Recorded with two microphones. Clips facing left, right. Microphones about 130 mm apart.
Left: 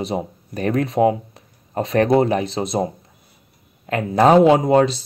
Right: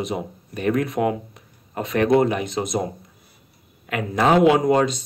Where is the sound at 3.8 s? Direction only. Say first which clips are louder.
Left 5 dB; 35° left (ahead or behind).